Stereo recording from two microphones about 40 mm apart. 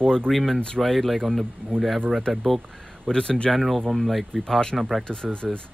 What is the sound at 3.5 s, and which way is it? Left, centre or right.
Speech, centre.